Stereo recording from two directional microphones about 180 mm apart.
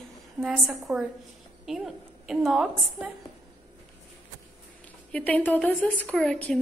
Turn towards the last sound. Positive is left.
turn(degrees=5)  # may be behind; listen again after turning